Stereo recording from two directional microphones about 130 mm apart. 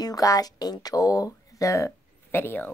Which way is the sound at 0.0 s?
30° left (ahead or behind).